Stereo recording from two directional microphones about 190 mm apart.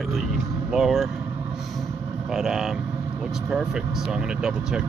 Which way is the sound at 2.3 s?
5° right (ahead or behind).